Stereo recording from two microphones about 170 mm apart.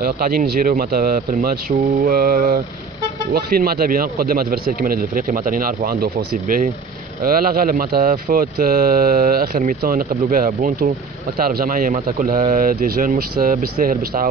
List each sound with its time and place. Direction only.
0.0 s speech: 60° right (ahead or behind)